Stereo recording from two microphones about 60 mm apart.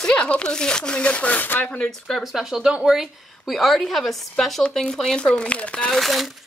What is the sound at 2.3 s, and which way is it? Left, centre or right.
Speech, centre.